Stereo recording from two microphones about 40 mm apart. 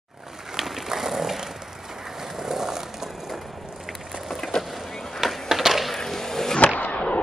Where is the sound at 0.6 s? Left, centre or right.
Centre.